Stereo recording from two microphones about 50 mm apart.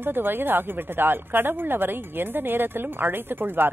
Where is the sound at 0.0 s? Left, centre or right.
Right.